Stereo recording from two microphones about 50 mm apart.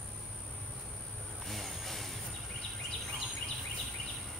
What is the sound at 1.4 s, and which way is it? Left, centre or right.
Vehicle, centre.